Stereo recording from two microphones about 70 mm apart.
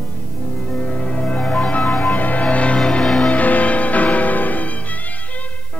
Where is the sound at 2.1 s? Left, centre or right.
Left; by 3.3 s centre.